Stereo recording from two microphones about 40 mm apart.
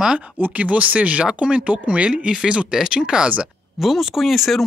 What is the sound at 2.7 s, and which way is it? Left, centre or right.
Speech, centre.